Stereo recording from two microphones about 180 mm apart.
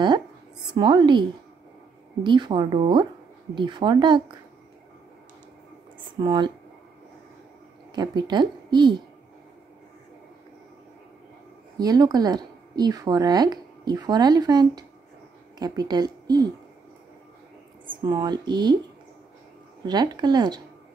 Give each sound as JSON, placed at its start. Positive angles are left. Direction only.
{"t": 0.7, "sound": "speech", "side_deg": -25}
{"t": 2.2, "sound": "speech", "side_deg": -25}
{"t": 5.9, "sound": "speech", "side_deg": -25}
{"t": 7.9, "sound": "speech", "side_deg": -25}
{"t": 11.8, "sound": "speech", "side_deg": -20}
{"t": 18.0, "sound": "speech", "side_deg": -25}
{"t": 19.8, "sound": "speech", "side_deg": -25}